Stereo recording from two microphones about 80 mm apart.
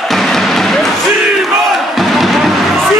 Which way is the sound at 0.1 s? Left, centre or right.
Centre.